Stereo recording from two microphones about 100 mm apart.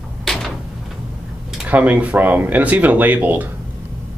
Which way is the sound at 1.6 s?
15° right (ahead or behind).